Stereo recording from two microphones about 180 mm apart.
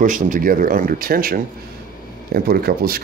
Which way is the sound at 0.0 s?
45° right (ahead or behind).